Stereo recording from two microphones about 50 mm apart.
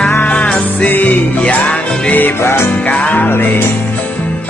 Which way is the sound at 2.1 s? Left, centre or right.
Left.